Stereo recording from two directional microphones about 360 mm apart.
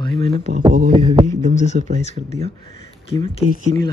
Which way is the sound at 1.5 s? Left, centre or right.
Centre.